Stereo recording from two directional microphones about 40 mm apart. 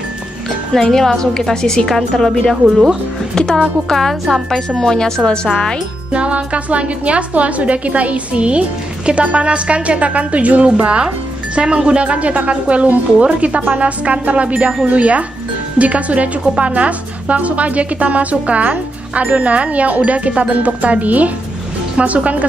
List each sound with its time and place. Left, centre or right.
0.7 s a woman's voice: centre
3.3 s a woman's voice: centre
6.1 s a woman's voice: right
13.6 s speech: right
13.8 s a woman's voice: right